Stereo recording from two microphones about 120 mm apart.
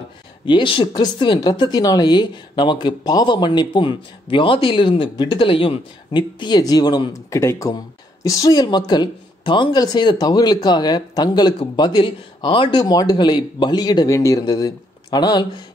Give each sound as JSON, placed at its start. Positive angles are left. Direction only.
{"t": 0.5, "sound": "speech", "side_deg": 45}
{"t": 14.0, "sound": "speech", "side_deg": 25}